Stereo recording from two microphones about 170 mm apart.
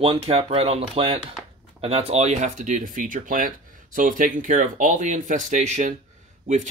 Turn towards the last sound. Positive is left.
turn(degrees=-45)  # may be behind; listen again after turning